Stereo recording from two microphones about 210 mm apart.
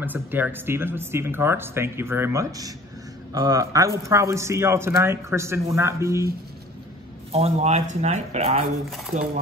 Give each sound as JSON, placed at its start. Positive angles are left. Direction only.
{"t": 0.0, "sound": "a man's voice", "side_deg": -10}
{"t": 7.3, "sound": "speech", "side_deg": -30}